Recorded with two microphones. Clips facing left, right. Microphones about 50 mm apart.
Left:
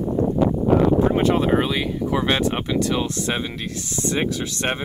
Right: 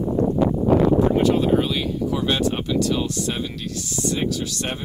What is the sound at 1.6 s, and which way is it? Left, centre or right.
Speech, left.